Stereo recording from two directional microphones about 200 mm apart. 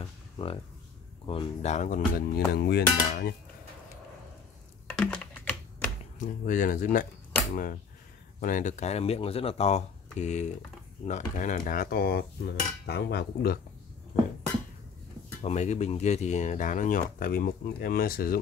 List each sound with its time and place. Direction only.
0.0 s music: 25° left (ahead or behind)
1.2 s cutlery: 25° left (ahead or behind); by 3.3 s 50° left (ahead or behind)
4.9 s computer keyboard: 5° left (ahead or behind)
6.1 s cutlery: 40° left (ahead or behind)
8.4 s speech: 40° left (ahead or behind)
11.1 s cutlery: 40° left (ahead or behind)
15.4 s speech: 35° left (ahead or behind)